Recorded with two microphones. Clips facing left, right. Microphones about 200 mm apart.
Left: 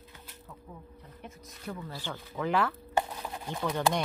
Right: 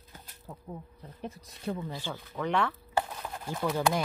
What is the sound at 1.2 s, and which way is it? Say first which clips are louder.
Speech: right 7 dB; 30° right (ahead or behind).